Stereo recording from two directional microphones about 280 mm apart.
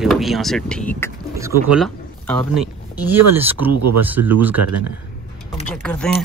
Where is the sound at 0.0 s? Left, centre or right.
Centre.